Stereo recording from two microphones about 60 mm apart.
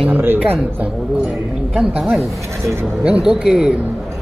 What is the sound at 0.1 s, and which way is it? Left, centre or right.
Speech, right.